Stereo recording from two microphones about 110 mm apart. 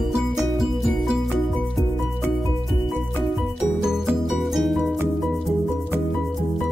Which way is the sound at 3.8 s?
5° right (ahead or behind).